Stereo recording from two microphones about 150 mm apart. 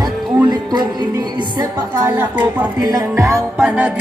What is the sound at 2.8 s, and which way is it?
Music, 25° right (ahead or behind).